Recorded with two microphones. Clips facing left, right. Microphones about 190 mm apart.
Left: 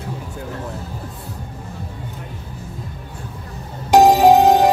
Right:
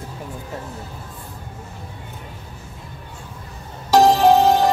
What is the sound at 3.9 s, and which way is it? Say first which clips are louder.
Music: left 3 dB; 15° left (ahead or behind).